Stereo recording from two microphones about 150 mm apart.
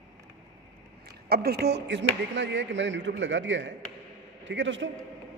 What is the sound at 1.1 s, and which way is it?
Speech, 90° right.